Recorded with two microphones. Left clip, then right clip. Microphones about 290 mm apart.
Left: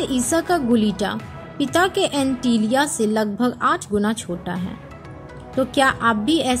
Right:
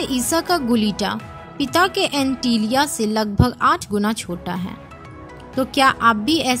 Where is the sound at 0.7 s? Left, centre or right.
Right.